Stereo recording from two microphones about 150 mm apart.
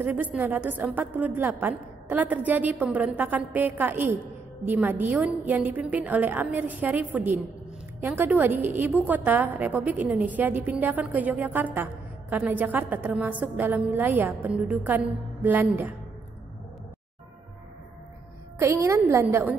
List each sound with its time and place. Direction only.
0.0 s a woman's voice: 10° right (ahead or behind)
18.6 s a woman's voice: 20° right (ahead or behind)